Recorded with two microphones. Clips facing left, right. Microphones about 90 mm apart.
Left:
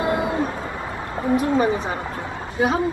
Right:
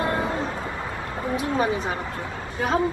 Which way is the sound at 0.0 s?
15° left (ahead or behind).